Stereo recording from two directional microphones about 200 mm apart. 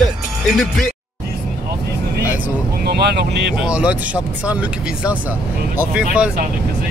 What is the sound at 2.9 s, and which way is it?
Speech, 50° right (ahead or behind).